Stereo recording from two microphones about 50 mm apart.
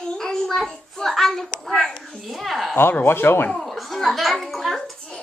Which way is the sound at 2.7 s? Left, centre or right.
Left.